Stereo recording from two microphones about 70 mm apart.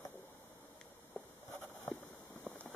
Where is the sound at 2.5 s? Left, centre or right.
Right.